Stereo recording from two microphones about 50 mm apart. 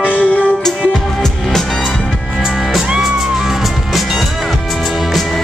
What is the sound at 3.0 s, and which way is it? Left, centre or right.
Music, centre.